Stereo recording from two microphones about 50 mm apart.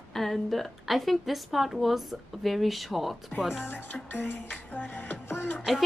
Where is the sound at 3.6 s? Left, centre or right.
Left.